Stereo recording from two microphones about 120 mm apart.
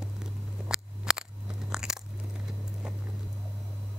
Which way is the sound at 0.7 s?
5° right (ahead or behind).